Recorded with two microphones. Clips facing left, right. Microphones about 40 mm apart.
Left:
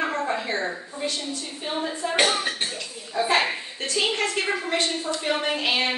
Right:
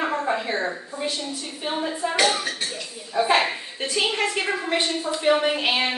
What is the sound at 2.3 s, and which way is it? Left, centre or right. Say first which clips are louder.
Speech: left 1 dB; left.